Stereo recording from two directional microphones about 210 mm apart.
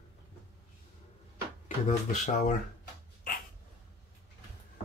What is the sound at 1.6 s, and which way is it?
Speech, 35° left (ahead or behind).